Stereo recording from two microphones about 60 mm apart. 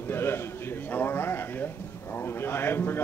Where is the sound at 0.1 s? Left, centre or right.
Left.